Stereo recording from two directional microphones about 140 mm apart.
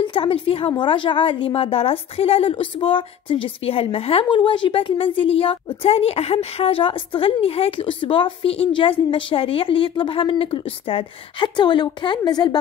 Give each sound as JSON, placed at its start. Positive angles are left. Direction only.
{"t": 0.0, "sound": "a woman's voice", "side_deg": 40}